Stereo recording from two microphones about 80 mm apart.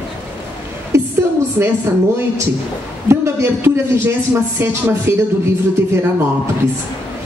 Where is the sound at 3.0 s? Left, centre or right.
Right.